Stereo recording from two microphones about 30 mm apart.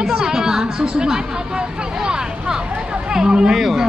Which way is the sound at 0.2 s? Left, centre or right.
Centre.